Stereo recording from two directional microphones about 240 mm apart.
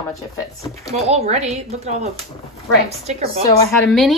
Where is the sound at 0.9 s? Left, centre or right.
Right.